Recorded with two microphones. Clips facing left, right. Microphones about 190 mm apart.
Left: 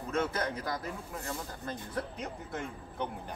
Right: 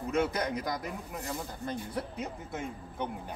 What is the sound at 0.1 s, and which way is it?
Speech, 15° right (ahead or behind).